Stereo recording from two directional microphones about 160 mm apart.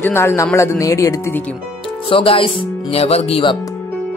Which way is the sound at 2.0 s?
35° left (ahead or behind).